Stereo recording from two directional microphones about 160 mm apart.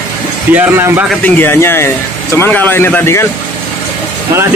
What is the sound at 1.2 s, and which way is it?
Speech, 15° left (ahead or behind).